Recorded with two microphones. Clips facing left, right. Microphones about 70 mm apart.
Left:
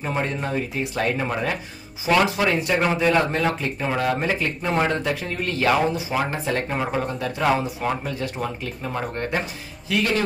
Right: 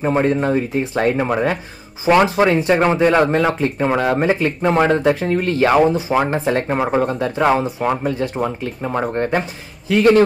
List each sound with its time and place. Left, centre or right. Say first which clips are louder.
0.0 s speech: right 9 dB; right